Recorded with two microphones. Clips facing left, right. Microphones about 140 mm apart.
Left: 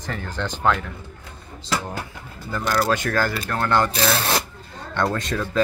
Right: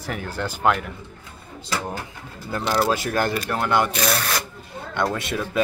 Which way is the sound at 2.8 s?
5° right (ahead or behind).